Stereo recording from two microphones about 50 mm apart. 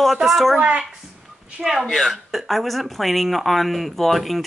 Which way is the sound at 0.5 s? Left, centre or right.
Right.